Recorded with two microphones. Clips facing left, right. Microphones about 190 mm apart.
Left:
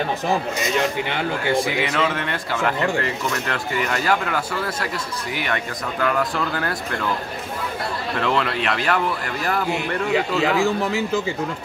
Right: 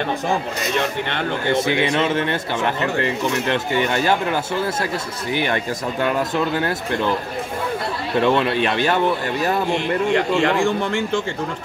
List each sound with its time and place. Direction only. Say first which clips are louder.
0.3 s speech: even; 10° left (ahead or behind)
1.5 s speech: right 4 dB; 25° right (ahead or behind)
8.2 s speech: right 5 dB; 25° right (ahead or behind)
9.7 s speech: right 3 dB; 5° left (ahead or behind)